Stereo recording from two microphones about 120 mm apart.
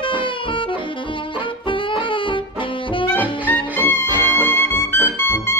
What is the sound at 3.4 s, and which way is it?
Music, 15° left (ahead or behind).